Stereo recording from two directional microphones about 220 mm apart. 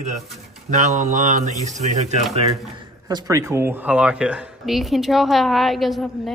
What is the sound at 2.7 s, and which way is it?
A woman's voice, 20° right (ahead or behind).